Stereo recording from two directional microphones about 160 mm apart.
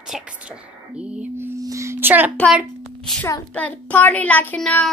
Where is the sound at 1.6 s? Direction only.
20° right (ahead or behind).